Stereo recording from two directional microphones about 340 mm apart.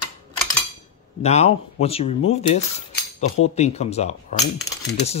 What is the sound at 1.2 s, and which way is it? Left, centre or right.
Speech, centre.